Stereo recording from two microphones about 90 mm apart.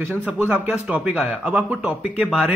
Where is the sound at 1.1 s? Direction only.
10° right (ahead or behind).